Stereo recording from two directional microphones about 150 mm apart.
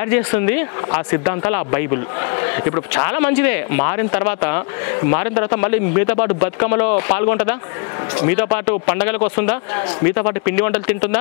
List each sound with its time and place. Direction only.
0.1 s speech: 15° left (ahead or behind)